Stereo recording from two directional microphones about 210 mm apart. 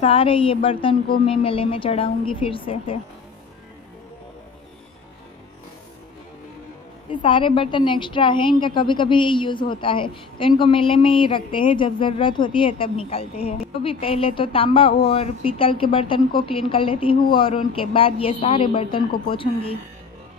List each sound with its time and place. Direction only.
0.0 s a woman's voice: 25° left (ahead or behind)
7.1 s a woman's voice: 25° left (ahead or behind)